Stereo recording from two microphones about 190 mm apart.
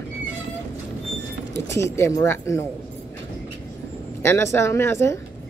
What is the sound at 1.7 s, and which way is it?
Speech, 15° left (ahead or behind).